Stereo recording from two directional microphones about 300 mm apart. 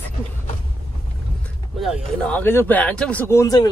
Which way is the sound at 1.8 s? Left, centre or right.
Centre.